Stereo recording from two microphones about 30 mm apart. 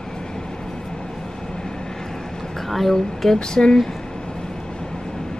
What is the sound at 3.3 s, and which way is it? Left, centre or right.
Speech, left.